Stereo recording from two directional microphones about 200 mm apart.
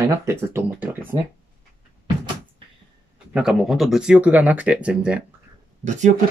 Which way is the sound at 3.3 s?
Centre (ahead or behind).